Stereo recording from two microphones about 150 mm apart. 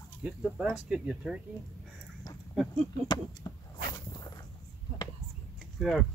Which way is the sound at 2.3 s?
25° left (ahead or behind).